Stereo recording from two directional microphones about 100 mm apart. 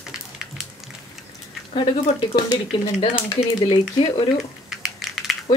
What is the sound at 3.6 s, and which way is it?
Speech, 50° left (ahead or behind).